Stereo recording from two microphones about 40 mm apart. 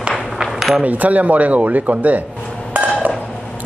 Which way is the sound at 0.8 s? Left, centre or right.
Right.